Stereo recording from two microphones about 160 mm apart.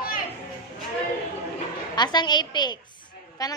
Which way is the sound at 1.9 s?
25° left (ahead or behind).